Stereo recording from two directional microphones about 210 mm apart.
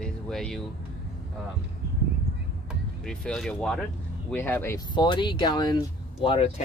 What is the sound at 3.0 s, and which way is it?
Speech, 5° left (ahead or behind).